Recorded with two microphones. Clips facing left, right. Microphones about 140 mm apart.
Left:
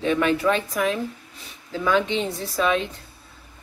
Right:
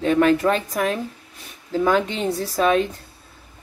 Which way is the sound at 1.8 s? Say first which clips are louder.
Right 2 dB; 40° right (ahead or behind).